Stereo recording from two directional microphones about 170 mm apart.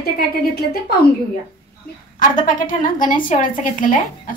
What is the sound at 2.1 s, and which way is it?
A woman's voice, 50° left (ahead or behind).